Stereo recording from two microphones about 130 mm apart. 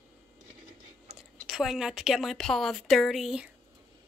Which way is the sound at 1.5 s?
5° right (ahead or behind).